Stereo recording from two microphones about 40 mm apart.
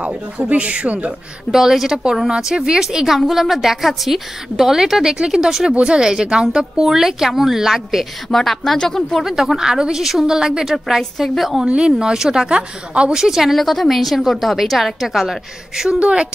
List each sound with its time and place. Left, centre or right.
0.5 s speech: right
1.5 s a woman's voice: centre
8.3 s a woman's voice: centre
9.2 s a woman's voice: centre
10.6 s a woman's voice: centre
11.0 s speech: centre
11.3 s a woman's voice: centre
11.6 s a woman's voice: right
13.1 s a woman's voice: centre
13.6 s a woman's voice: centre
15.7 s a woman's voice: centre